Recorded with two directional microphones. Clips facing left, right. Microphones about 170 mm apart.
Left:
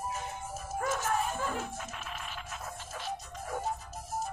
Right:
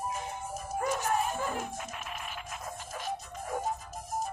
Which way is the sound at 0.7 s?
15° right (ahead or behind).